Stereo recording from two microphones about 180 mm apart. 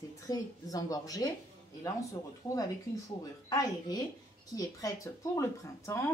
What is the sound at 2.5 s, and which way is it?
Speech, 20° left (ahead or behind).